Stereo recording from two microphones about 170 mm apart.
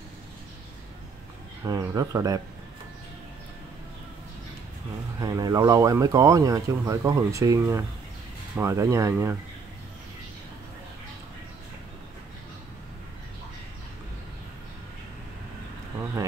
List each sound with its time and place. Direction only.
1.6 s speech: 20° right (ahead or behind)
5.2 s speech: 20° right (ahead or behind)